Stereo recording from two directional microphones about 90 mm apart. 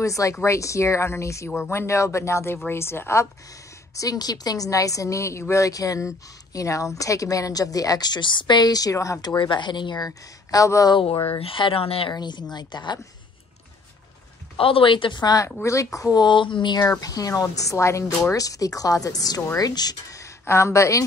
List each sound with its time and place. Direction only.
0.0 s a woman's voice: 35° left (ahead or behind)
4.0 s a woman's voice: 45° left (ahead or behind)
9.2 s speech: 55° left (ahead or behind); by 10.9 s 40° left (ahead or behind)
10.9 s speech: 70° left (ahead or behind)
11.2 s speech: 90° left
12.1 s speech: 55° left (ahead or behind)
14.6 s speech: 80° left; by 15.3 s 60° left (ahead or behind)
15.3 s a woman's voice: 35° left (ahead or behind)
16.3 s speech: 65° left (ahead or behind)
17.0 s a woman's voice: 45° left (ahead or behind)